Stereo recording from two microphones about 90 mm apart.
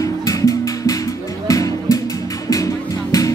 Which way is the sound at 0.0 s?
40° left (ahead or behind).